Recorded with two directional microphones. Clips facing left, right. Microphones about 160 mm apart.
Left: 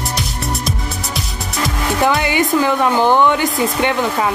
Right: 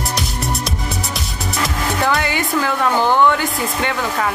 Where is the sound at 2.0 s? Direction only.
20° left (ahead or behind).